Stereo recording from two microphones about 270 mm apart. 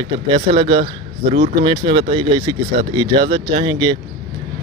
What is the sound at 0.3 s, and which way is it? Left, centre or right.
Speech, centre.